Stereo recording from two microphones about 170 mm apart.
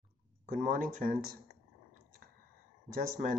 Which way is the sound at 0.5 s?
55° right (ahead or behind).